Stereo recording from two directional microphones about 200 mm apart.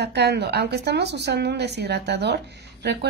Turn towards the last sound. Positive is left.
turn(degrees=-55)  # may be behind; listen again after turning